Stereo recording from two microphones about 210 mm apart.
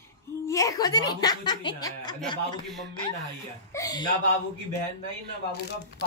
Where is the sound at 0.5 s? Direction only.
15° left (ahead or behind).